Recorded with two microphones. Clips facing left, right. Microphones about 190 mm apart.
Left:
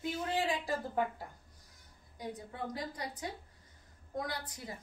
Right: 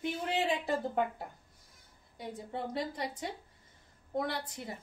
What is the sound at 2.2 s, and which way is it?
A woman's voice, 25° right (ahead or behind).